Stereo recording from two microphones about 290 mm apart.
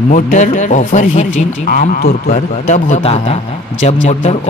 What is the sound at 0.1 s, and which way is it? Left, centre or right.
Speech, left.